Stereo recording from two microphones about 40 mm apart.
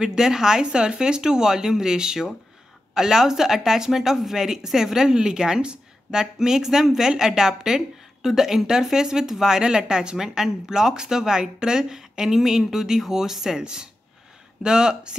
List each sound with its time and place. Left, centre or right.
0.0 s speech: centre